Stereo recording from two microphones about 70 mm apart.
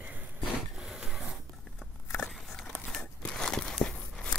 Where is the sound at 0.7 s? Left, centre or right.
Centre.